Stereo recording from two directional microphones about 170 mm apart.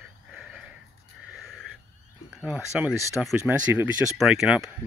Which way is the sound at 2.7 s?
5° right (ahead or behind).